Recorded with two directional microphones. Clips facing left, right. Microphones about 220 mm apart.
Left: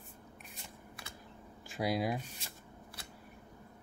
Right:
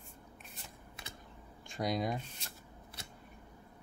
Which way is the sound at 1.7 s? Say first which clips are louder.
Left 1 dB; 5° left (ahead or behind).